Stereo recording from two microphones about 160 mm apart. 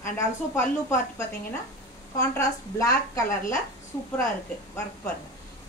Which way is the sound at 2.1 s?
20° left (ahead or behind).